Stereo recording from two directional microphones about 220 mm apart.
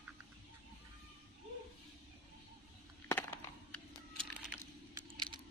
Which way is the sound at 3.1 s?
10° left (ahead or behind).